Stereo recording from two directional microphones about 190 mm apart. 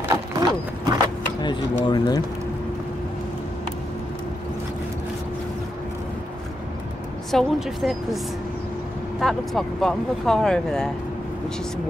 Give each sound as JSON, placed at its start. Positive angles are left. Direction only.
{"t": 0.4, "sound": "horse", "side_deg": -20}
{"t": 1.4, "sound": "speech", "side_deg": 25}
{"t": 7.2, "sound": "speech", "side_deg": 0}
{"t": 9.2, "sound": "speech", "side_deg": 0}